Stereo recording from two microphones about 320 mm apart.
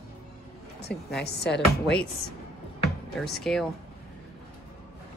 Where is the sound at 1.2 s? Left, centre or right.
Left.